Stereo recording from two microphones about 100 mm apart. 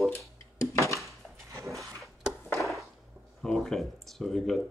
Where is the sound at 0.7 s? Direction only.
30° left (ahead or behind).